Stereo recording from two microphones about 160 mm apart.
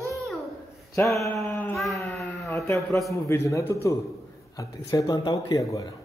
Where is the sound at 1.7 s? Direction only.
Centre (ahead or behind).